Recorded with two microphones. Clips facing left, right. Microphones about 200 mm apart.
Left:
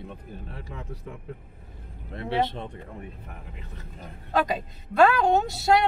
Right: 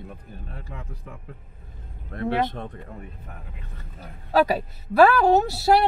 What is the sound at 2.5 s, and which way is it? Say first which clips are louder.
Speech: right 1 dB; 20° left (ahead or behind).